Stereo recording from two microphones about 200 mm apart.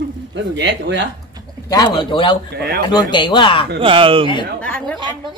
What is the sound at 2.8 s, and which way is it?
Speech, 20° left (ahead or behind).